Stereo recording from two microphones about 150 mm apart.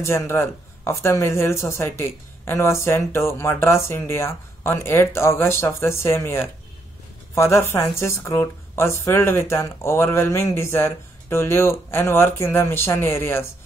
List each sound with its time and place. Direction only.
0.0 s speech: 15° left (ahead or behind)